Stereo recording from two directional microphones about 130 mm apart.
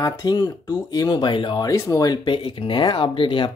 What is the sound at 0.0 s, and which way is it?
Speech, 30° left (ahead or behind).